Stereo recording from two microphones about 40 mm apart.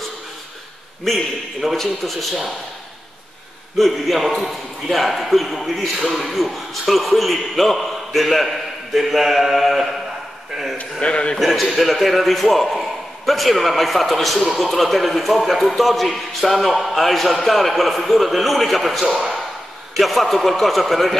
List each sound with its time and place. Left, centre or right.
1.0 s a man's voice: centre
3.7 s a man's voice: centre
10.5 s a sound: centre
11.0 s a man's voice: left
11.3 s a man's voice: centre